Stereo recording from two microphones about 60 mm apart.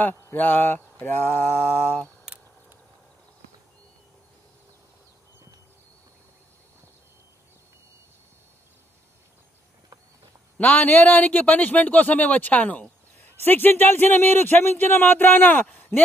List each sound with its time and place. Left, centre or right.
0.0 s speech: left
10.6 s speech: left